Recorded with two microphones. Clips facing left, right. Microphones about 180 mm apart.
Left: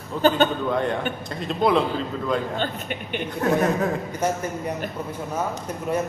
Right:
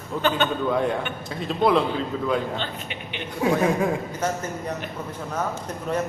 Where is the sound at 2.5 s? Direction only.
50° left (ahead or behind).